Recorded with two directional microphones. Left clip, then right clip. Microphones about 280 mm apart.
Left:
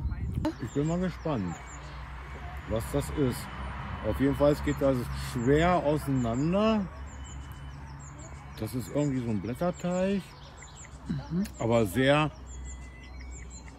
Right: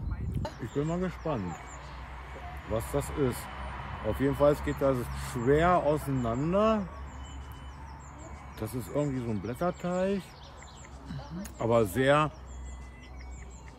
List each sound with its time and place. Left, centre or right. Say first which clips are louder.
0.4 s speech: left 3 dB; centre
2.7 s speech: even; right
4.0 s speech: left 1 dB; right
4.4 s speech: right 1 dB; centre
8.7 s speech: left 1 dB; centre